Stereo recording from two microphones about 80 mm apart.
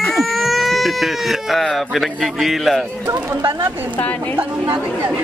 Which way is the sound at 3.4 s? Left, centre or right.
Right.